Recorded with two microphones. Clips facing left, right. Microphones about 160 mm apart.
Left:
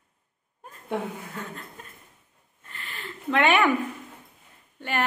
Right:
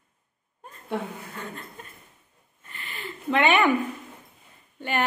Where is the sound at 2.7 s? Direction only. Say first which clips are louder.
Right 2 dB; 5° right (ahead or behind).